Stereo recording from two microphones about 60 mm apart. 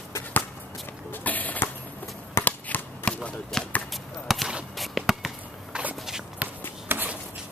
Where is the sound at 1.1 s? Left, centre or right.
Left.